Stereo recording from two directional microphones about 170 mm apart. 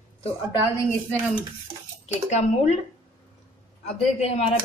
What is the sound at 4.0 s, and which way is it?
Speech, 40° left (ahead or behind).